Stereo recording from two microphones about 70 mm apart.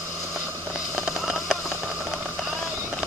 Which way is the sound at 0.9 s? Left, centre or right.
Centre.